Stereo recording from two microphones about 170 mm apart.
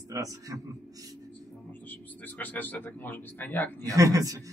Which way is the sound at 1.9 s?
10° left (ahead or behind).